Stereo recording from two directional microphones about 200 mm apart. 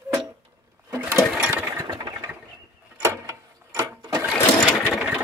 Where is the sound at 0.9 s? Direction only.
10° right (ahead or behind).